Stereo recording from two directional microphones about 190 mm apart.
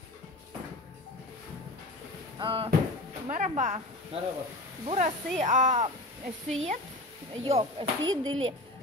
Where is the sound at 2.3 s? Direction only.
25° right (ahead or behind).